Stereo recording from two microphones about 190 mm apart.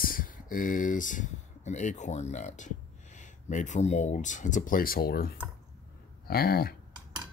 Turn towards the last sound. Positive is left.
turn(degrees=55)  # may be behind; listen again after turning